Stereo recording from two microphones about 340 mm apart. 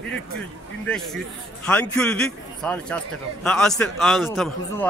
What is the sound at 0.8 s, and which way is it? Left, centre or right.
A man's voice, centre.